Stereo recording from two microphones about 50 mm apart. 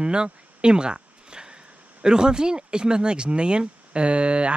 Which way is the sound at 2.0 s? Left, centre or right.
Centre.